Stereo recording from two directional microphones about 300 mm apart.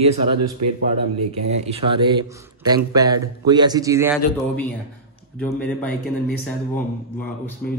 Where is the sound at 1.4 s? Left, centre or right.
Centre.